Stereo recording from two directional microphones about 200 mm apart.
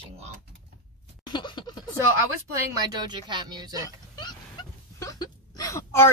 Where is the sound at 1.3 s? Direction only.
20° left (ahead or behind).